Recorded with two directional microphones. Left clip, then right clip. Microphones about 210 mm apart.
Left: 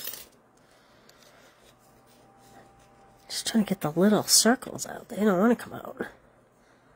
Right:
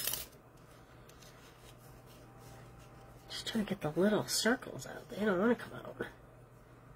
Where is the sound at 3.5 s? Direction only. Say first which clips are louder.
Left 9 dB; 55° left (ahead or behind).